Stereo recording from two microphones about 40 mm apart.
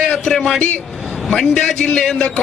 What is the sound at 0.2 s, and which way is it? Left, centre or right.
A man's voice, centre.